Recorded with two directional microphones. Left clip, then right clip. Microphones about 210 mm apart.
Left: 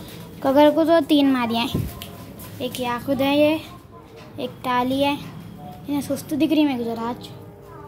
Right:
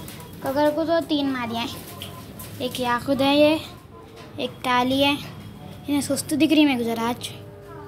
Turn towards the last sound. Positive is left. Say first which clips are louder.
# right 2 dB
turn(degrees=-5)  # may be behind; listen again after turning